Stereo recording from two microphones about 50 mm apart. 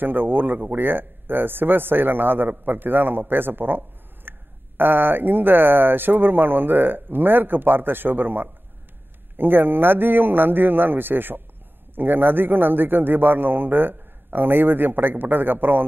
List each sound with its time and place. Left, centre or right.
0.0 s speech: right